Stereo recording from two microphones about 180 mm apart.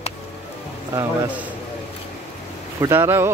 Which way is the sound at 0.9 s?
15° right (ahead or behind).